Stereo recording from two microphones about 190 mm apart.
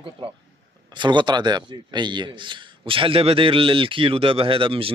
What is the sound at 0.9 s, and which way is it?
A man's voice, 25° right (ahead or behind).